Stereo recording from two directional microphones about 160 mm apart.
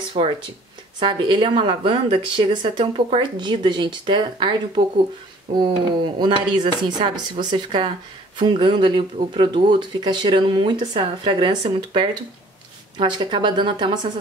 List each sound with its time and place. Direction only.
0.2 s a woman's voice: 40° right (ahead or behind)